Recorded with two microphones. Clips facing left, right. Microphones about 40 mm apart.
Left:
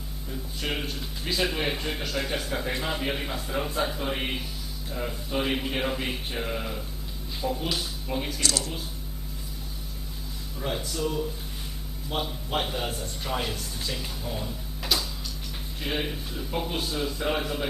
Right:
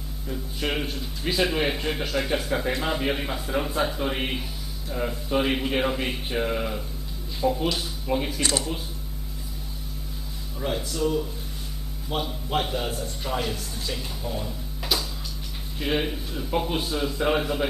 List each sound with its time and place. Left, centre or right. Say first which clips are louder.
0.3 s speech: right 4 dB; centre
8.4 s speech: right 3 dB; right
10.6 s a man's voice: right 3 dB; centre